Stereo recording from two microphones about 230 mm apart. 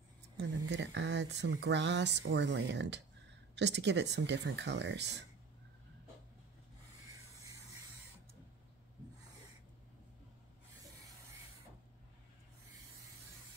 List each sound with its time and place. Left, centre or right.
0.4 s speech: right